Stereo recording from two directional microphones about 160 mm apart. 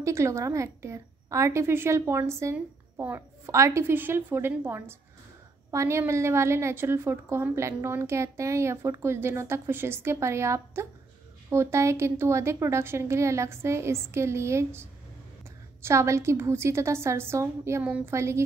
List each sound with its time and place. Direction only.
0.0 s a woman's voice: 20° right (ahead or behind)